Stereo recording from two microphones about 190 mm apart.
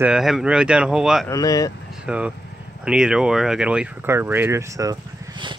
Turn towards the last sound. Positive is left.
turn(degrees=-20)  # may be behind; listen again after turning